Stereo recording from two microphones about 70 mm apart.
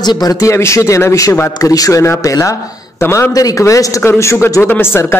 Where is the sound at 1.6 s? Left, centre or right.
Left.